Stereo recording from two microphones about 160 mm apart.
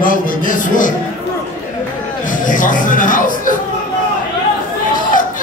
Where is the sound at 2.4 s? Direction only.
55° left (ahead or behind).